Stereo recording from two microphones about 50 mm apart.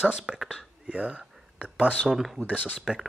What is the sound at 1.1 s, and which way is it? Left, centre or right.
Whispering, centre.